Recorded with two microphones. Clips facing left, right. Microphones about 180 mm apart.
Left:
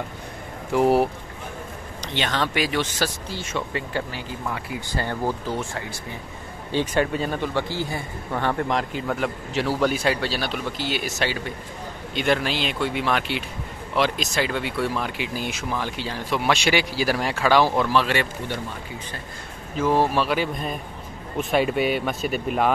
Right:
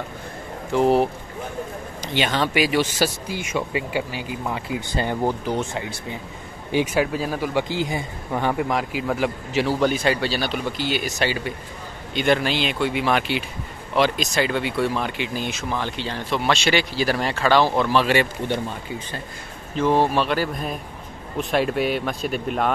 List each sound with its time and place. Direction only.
0.7 s speech: 10° left (ahead or behind)
2.1 s a man's voice: 5° right (ahead or behind)
18.4 s speech: 20° right (ahead or behind)
19.8 s a man's voice: 5° left (ahead or behind)